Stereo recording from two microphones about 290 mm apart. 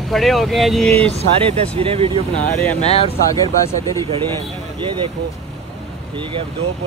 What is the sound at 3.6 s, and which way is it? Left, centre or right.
Speech, centre.